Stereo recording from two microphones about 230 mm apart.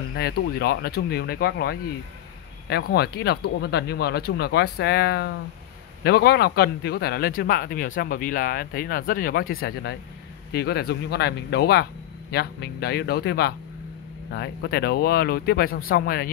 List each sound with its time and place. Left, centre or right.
0.1 s speech: left